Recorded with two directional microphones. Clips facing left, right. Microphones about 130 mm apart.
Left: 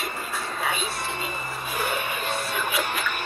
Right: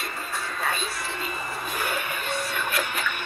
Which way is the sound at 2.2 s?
25° left (ahead or behind).